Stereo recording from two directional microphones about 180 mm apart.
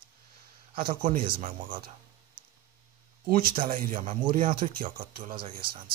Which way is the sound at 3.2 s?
50° right (ahead or behind).